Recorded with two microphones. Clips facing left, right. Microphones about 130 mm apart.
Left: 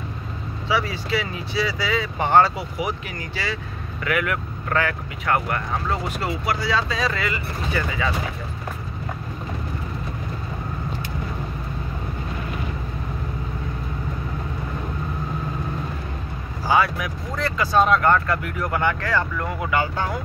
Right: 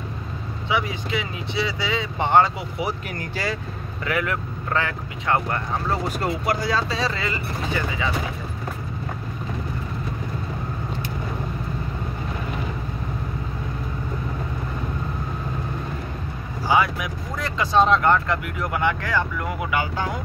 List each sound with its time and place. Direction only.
0.7 s speech: 20° right (ahead or behind)
3.2 s speech: 45° right (ahead or behind)
4.0 s speech: 25° right (ahead or behind)
5.9 s speech: 40° right (ahead or behind)
6.9 s speech: 30° right (ahead or behind)
16.6 s speech: 15° right (ahead or behind)